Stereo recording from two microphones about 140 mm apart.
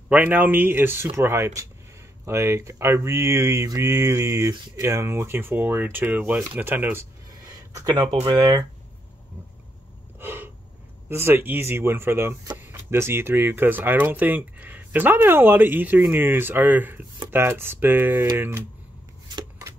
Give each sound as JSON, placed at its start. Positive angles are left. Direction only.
{"t": 0.1, "sound": "speech", "side_deg": -10}
{"t": 7.4, "sound": "speech", "side_deg": -25}
{"t": 10.1, "sound": "a sound", "side_deg": -15}
{"t": 11.1, "sound": "speech", "side_deg": -15}
{"t": 19.2, "sound": "chopping", "side_deg": -30}